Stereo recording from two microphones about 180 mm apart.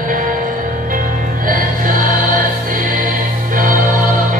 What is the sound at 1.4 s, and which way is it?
Music, 50° right (ahead or behind).